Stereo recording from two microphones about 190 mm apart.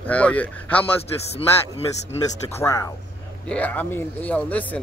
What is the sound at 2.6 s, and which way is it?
Speech, 15° left (ahead or behind).